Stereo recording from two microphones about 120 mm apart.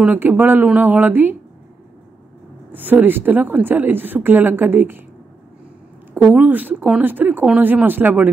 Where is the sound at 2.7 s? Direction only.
15° right (ahead or behind).